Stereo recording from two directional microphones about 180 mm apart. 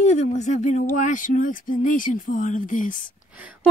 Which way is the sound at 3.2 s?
5° right (ahead or behind).